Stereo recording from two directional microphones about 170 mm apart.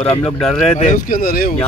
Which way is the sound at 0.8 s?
50° left (ahead or behind).